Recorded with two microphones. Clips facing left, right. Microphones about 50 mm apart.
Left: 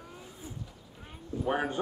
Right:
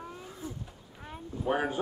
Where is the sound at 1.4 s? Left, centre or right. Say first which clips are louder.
Right 1 dB; centre.